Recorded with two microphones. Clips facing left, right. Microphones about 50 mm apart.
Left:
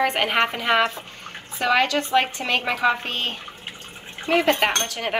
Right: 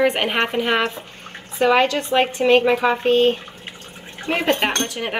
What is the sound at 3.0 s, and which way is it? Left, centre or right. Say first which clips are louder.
Speech: right 12 dB; right.